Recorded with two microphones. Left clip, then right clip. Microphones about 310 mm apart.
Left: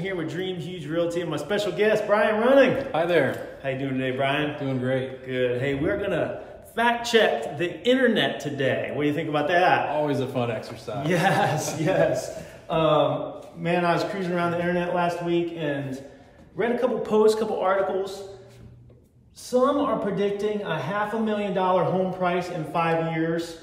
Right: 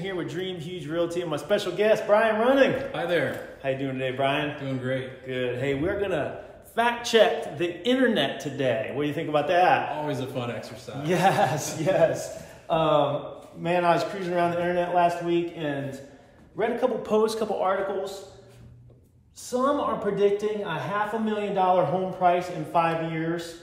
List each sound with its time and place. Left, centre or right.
0.0 s a man's voice: centre
2.8 s a man's voice: centre
3.6 s a man's voice: centre
4.6 s a man's voice: centre
5.3 s a man's voice: centre
10.0 s a man's voice: centre
11.0 s a man's voice: centre
19.5 s a man's voice: centre